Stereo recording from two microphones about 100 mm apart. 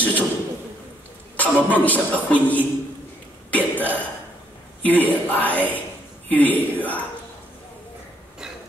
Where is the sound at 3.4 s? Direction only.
15° left (ahead or behind).